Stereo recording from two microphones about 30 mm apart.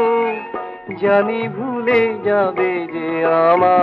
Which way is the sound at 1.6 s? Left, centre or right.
Centre.